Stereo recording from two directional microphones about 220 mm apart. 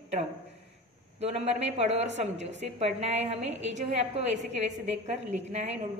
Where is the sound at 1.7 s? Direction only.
30° right (ahead or behind).